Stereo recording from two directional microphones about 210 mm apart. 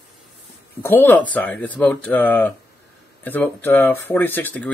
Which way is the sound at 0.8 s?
10° left (ahead or behind).